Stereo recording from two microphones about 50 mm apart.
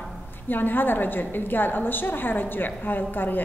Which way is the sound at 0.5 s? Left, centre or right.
Left.